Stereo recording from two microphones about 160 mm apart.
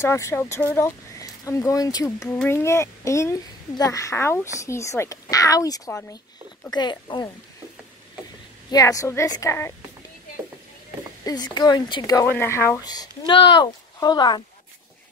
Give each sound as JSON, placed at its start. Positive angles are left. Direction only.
{"t": 0.0, "sound": "a woman's voice", "side_deg": 15}
{"t": 8.6, "sound": "speech", "side_deg": 20}
{"t": 11.2, "sound": "speech", "side_deg": 25}